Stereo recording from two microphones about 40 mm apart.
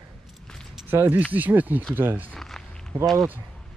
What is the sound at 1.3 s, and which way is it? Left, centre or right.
Speech, right.